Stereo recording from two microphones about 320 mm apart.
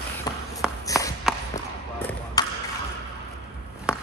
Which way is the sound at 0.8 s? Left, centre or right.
Centre.